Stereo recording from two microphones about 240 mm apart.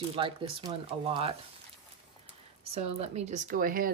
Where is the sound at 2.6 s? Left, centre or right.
Right.